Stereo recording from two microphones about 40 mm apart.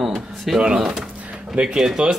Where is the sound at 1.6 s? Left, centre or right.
Centre.